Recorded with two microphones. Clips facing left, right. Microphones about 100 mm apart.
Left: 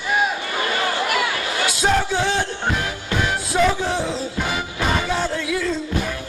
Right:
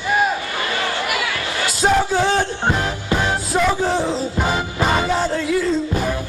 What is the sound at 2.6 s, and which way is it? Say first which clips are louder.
Music: right 3 dB; 25° right (ahead or behind).